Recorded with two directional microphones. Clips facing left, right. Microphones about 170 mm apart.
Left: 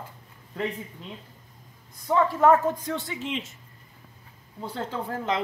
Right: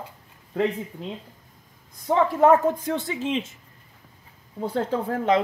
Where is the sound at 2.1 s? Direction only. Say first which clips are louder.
Right 2 dB; 25° right (ahead or behind).